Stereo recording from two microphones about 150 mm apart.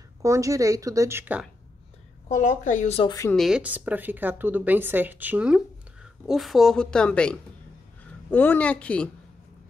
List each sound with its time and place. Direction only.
0.2 s a woman's voice: 20° right (ahead or behind)
2.2 s speech: 60° left (ahead or behind)
3.3 s a woman's voice: 5° right (ahead or behind)